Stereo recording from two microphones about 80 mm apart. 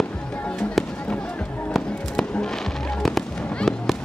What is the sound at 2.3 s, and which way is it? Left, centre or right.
Fireworks, centre.